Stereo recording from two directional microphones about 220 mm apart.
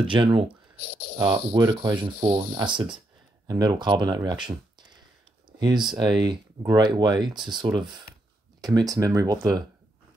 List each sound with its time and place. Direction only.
0.0 s speech: 20° right (ahead or behind)
5.6 s speech: 20° right (ahead or behind)